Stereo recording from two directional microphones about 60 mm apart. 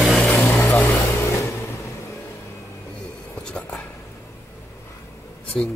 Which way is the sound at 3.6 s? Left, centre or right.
Left.